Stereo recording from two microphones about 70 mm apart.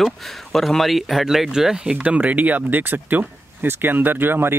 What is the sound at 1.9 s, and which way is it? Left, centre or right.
Speech, right.